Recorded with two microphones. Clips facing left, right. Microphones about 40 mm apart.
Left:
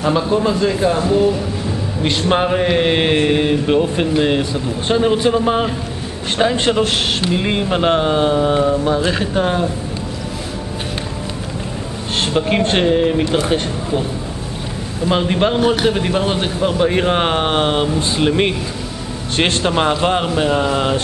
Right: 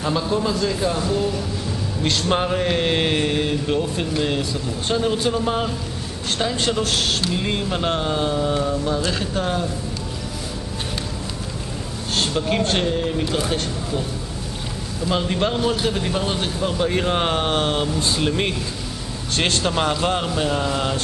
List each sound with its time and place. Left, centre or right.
0.0 s speech: left
12.2 s speech: left
15.0 s speech: left